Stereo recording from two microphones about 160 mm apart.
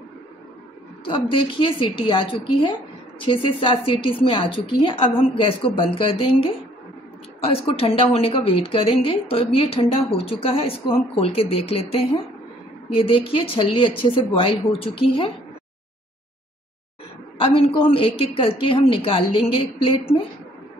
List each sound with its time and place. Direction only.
1.0 s a woman's voice: 35° left (ahead or behind)
17.4 s a woman's voice: 35° left (ahead or behind)